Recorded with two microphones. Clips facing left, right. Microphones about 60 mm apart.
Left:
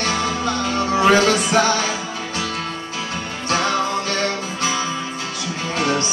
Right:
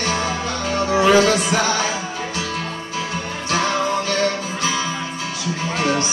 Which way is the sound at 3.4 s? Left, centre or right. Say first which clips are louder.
Left 1 dB; left.